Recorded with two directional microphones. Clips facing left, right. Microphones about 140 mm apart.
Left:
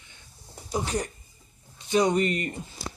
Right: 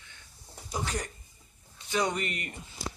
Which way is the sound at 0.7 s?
25° left (ahead or behind).